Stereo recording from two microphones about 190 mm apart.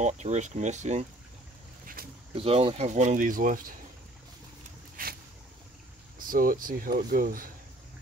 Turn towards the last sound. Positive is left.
turn(degrees=-45)  # may be behind; listen again after turning